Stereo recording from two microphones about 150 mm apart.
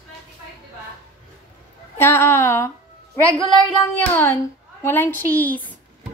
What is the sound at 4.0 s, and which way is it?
A woman's voice, 10° left (ahead or behind).